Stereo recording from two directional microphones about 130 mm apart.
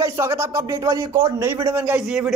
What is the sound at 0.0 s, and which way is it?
Speech, 20° right (ahead or behind).